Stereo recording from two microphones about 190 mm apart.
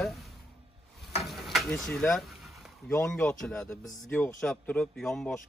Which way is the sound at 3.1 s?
5° left (ahead or behind).